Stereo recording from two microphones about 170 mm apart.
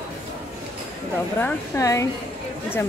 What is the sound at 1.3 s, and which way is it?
Speech, 15° left (ahead or behind).